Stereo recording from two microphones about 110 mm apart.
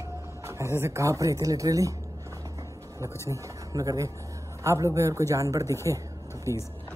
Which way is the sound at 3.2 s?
30° right (ahead or behind).